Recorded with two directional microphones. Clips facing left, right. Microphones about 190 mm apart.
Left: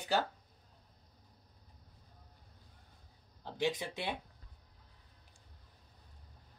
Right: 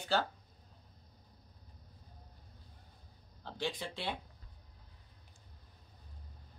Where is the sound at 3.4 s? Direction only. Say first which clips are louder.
Left 4 dB; 15° left (ahead or behind).